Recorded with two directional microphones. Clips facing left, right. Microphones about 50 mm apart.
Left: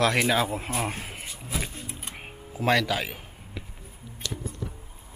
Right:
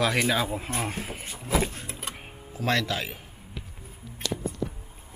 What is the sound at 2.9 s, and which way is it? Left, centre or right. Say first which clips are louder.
Speech: left 2 dB; centre.